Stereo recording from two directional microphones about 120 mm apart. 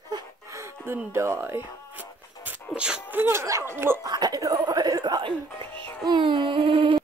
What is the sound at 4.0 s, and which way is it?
A child's voice, 35° right (ahead or behind).